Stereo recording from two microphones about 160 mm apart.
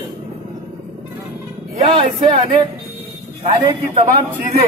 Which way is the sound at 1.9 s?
35° right (ahead or behind).